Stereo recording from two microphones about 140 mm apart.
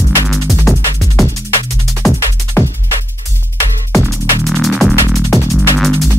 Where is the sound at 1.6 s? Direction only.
20° left (ahead or behind).